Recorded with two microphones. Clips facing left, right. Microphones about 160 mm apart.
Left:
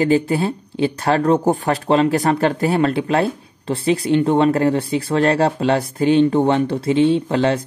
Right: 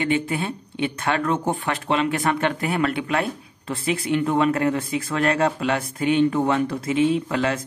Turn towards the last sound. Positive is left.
turn(degrees=30)  # may be behind; listen again after turning